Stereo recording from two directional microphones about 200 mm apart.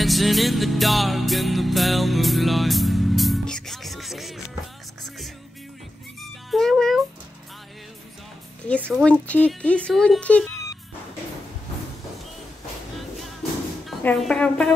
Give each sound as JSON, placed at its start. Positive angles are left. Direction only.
{"t": 0.0, "sound": "music", "side_deg": 0}
{"t": 6.2, "sound": "music", "side_deg": 0}
{"t": 8.6, "sound": "speech", "side_deg": 5}
{"t": 13.8, "sound": "speech", "side_deg": 0}